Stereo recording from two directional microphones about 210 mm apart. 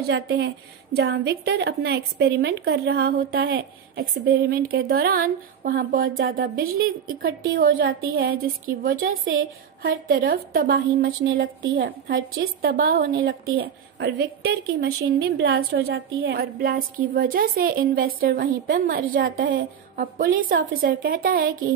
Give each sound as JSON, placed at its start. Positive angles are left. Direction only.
{"t": 0.1, "sound": "a woman's voice", "side_deg": -55}